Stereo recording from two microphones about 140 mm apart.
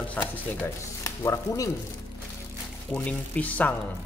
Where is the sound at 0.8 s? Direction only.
20° left (ahead or behind).